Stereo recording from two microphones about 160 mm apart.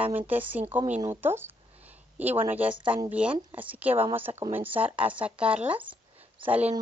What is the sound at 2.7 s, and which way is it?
Speech, 30° right (ahead or behind).